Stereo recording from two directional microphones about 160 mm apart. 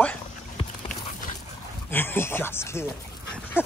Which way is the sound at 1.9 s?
15° left (ahead or behind).